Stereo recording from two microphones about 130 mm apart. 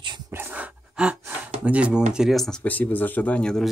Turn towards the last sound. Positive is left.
turn(degrees=5)  # may be behind; listen again after turning